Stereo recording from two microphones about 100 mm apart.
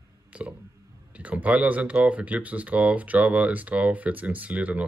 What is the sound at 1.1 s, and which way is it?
Speech, 15° right (ahead or behind).